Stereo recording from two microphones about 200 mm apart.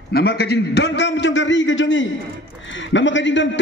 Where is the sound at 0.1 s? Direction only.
50° left (ahead or behind).